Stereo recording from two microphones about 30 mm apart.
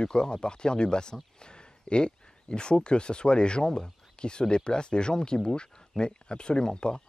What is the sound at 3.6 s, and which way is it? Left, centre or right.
Speech, centre.